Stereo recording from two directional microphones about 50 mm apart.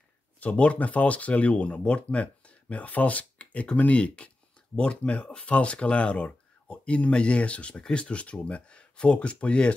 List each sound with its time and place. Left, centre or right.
0.4 s speech: left